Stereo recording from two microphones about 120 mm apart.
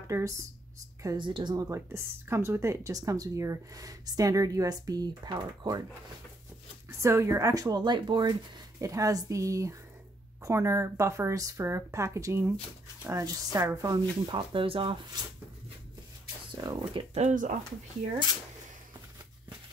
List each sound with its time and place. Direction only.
0.1 s speech: 25° right (ahead or behind)
1.1 s speech: 40° right (ahead or behind)
6.9 s speech: 25° right (ahead or behind)
13.9 s speech: 45° right (ahead or behind)
15.2 s speech: 35° right (ahead or behind)
17.1 s speech: 80° right